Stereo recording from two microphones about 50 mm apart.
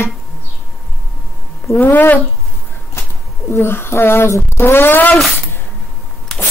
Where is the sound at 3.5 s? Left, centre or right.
Left.